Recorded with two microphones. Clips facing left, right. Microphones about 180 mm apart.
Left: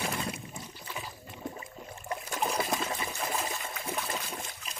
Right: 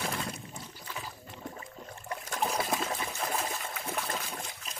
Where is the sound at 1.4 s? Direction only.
15° left (ahead or behind).